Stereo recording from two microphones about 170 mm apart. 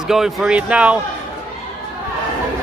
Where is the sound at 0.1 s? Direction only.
5° right (ahead or behind).